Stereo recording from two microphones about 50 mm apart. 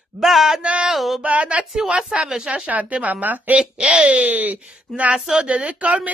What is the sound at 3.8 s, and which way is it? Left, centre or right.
Speech, centre.